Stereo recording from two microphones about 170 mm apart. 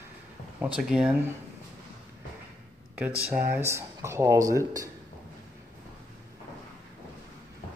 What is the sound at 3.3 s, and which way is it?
Speech, 15° right (ahead or behind).